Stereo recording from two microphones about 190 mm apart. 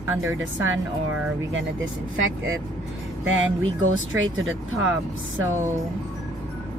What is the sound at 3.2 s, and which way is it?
Speech, 90° right.